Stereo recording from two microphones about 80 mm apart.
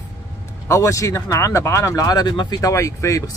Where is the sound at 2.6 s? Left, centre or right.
Left.